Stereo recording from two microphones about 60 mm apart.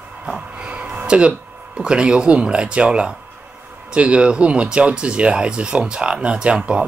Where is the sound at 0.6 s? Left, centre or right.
Centre.